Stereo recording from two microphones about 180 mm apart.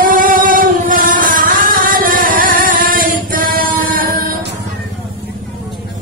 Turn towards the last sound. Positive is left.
turn(degrees=-50)  # may be behind; listen again after turning